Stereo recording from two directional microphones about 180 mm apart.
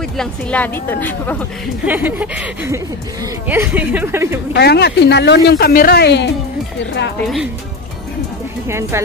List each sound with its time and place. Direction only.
0.2 s a woman's voice: 10° left (ahead or behind)
1.9 s speech: 10° right (ahead or behind)
4.6 s speech: 65° left (ahead or behind)
8.6 s speech: 15° right (ahead or behind)